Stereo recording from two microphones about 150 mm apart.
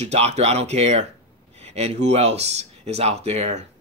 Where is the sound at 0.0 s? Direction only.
45° right (ahead or behind).